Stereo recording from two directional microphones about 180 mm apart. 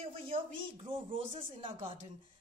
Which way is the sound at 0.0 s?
30° right (ahead or behind).